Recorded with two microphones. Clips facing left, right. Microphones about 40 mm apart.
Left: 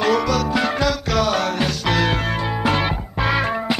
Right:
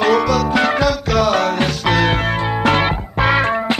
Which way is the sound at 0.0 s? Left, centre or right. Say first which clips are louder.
Right 4 dB; centre.